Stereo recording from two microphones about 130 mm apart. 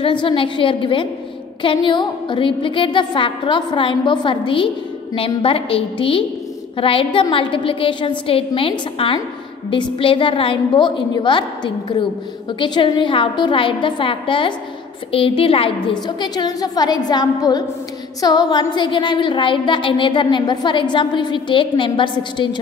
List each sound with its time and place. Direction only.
0.0 s a woman's voice: 40° left (ahead or behind)
16.2 s a woman's voice: 35° left (ahead or behind)